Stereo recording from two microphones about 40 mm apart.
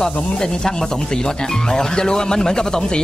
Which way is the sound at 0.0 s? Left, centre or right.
Centre.